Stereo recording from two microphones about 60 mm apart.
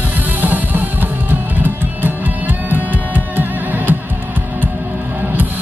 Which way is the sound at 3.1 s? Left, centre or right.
Right.